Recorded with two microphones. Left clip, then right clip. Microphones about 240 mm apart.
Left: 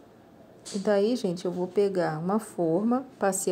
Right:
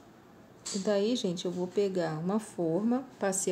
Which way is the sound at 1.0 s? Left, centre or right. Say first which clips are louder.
Left 4 dB; left.